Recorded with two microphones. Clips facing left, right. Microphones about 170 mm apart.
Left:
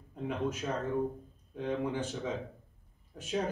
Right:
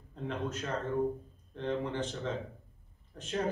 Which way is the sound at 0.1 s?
10° left (ahead or behind).